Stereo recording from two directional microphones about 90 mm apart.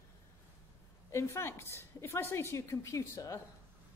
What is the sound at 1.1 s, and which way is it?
A woman's voice, 30° left (ahead or behind).